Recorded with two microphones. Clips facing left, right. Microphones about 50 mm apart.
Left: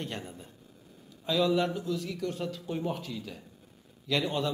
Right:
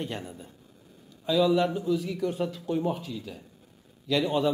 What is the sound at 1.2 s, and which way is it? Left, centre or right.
A man's voice, centre.